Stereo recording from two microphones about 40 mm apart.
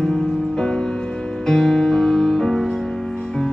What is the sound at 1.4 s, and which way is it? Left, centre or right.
Music, centre.